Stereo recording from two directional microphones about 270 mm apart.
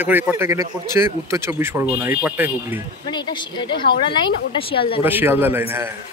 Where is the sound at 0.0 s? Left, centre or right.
Centre.